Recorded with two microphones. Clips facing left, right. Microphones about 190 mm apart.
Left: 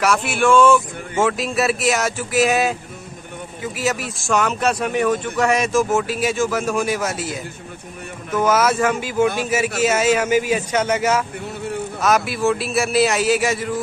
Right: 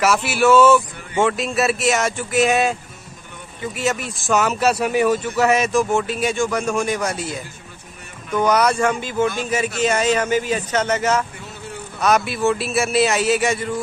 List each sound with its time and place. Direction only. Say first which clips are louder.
0.0 s a man's voice: right 1 dB; 5° right (ahead or behind)